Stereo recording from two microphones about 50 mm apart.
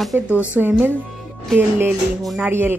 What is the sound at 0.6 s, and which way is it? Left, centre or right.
Music, centre.